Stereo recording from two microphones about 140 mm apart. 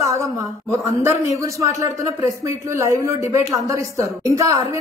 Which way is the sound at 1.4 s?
20° right (ahead or behind).